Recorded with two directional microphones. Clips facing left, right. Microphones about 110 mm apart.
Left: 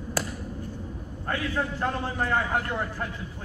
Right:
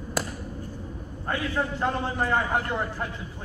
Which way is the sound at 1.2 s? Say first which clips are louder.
Right 1 dB; 20° right (ahead or behind).